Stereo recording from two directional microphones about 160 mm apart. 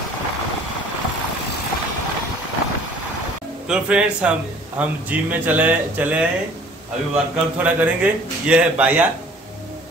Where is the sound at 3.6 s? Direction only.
5° right (ahead or behind).